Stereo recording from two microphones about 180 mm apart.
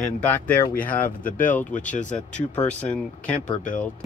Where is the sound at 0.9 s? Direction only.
50° left (ahead or behind).